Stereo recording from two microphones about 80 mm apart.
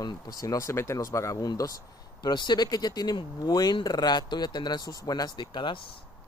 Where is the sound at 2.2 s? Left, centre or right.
Left.